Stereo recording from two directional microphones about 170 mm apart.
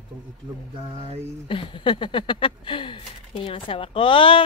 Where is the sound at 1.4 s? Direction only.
30° left (ahead or behind).